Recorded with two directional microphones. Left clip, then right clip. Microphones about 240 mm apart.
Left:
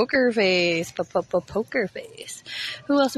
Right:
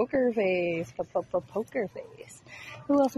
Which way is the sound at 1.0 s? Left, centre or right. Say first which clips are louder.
Left 6 dB; left.